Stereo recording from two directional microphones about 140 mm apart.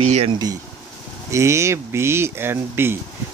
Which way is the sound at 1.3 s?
20° right (ahead or behind).